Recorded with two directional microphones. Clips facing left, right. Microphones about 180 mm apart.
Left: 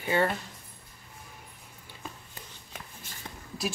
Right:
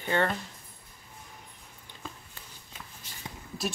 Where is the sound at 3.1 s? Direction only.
50° left (ahead or behind).